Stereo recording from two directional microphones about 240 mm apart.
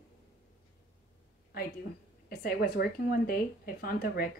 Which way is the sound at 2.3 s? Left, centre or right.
Left.